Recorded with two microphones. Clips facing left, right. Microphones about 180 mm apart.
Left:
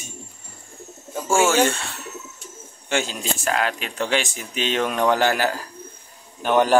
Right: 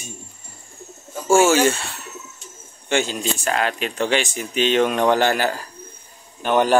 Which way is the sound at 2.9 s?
Centre (ahead or behind).